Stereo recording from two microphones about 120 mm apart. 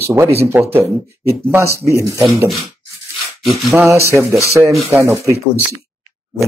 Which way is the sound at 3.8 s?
25° right (ahead or behind).